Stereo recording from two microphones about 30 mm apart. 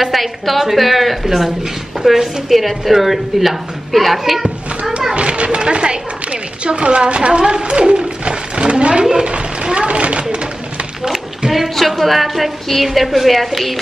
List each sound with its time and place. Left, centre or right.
0.0 s a woman's voice: centre
1.2 s a woman's voice: centre
4.2 s children playing: centre
5.1 s a sound: right
11.7 s a woman's voice: centre